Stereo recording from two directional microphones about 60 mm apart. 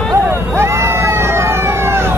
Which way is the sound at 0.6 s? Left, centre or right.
Right.